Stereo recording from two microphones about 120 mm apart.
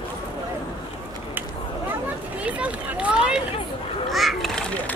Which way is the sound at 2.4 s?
10° right (ahead or behind).